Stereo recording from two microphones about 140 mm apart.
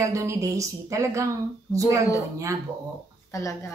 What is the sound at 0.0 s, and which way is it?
Speech, 20° right (ahead or behind).